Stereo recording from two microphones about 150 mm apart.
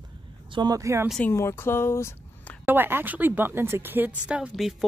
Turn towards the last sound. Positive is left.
turn(degrees=-5)  # may be behind; listen again after turning